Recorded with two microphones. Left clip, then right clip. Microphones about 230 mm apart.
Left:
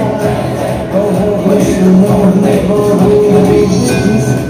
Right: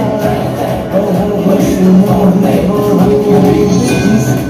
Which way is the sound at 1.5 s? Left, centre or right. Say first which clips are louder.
Right 1 dB; right.